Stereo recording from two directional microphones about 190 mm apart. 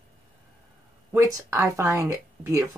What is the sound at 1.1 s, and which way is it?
Speech, 15° right (ahead or behind).